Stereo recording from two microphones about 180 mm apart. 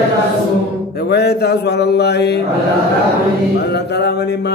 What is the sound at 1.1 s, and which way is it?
Mantra, 65° left (ahead or behind).